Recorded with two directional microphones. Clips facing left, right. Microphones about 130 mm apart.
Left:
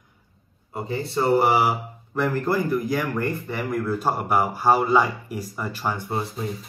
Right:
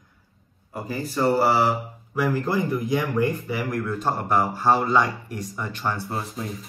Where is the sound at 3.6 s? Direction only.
Centre (ahead or behind).